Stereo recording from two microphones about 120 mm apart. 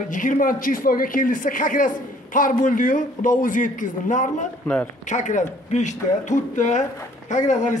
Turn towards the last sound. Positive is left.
turn(degrees=85)